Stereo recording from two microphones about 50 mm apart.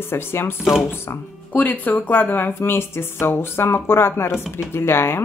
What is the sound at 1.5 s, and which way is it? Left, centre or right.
Speech, left.